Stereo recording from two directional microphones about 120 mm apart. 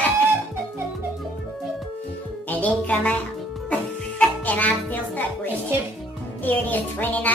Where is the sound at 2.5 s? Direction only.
10° left (ahead or behind).